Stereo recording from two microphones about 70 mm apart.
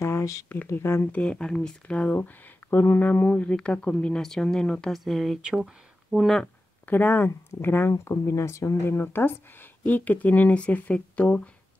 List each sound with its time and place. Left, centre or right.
0.0 s a sound: left
0.7 s speech: left
1.1 s speech: centre
4.9 s speech: centre
5.4 s speech: centre
6.1 s speech: centre
6.9 s speech: left